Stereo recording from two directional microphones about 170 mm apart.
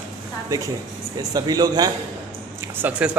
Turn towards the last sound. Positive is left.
turn(degrees=-10)  # may be behind; listen again after turning